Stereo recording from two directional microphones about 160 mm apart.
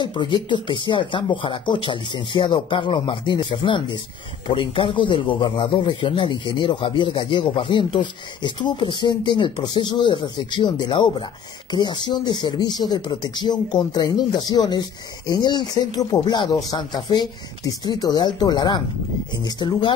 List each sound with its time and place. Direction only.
0.0 s speech: 30° left (ahead or behind)